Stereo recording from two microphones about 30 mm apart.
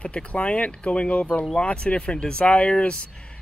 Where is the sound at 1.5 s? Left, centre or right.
Left.